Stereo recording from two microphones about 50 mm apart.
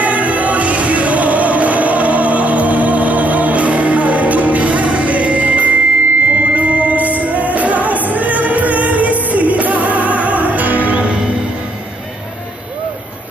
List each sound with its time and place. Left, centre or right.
0.0 s music: right